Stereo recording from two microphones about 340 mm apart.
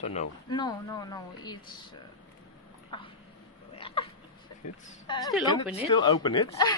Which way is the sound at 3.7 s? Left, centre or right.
Centre.